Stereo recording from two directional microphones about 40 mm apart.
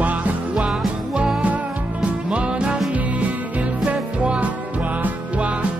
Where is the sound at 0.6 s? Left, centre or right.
Right.